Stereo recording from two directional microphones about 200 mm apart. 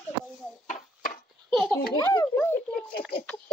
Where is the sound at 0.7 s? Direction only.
40° left (ahead or behind).